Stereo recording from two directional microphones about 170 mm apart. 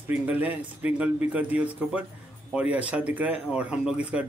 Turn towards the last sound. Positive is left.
turn(degrees=-5)  # may be behind; listen again after turning